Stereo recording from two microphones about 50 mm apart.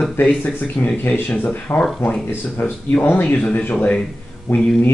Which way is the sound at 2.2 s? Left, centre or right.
Left.